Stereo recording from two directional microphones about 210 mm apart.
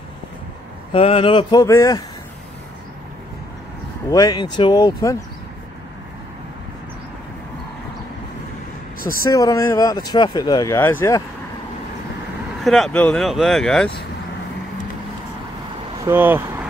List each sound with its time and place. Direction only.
0.9 s speech: 30° left (ahead or behind)
4.1 s speech: 20° left (ahead or behind)
9.3 s speech: 15° left (ahead or behind)
12.6 s speech: centre (ahead or behind)
16.0 s speech: 10° right (ahead or behind)